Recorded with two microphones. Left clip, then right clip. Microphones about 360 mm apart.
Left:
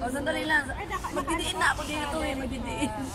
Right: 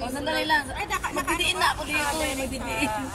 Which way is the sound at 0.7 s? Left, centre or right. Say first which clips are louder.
Right 4 dB; right.